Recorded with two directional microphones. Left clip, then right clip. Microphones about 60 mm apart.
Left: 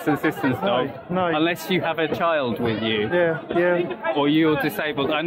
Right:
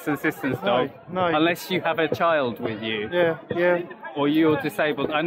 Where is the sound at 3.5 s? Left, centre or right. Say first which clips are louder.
Left 1 dB; right.